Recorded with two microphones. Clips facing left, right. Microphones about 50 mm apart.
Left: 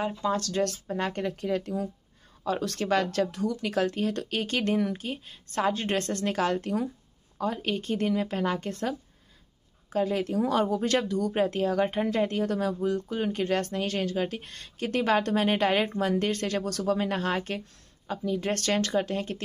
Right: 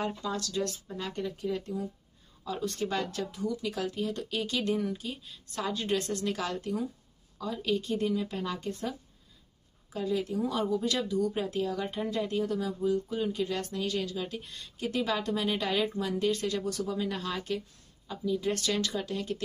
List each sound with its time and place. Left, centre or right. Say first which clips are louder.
0.4 s speech: left 5 dB; left
2.4 s speech: left 4 dB; left